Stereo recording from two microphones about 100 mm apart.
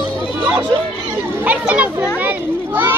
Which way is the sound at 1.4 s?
15° right (ahead or behind).